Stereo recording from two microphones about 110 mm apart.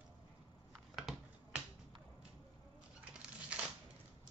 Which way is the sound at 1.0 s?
Centre (ahead or behind).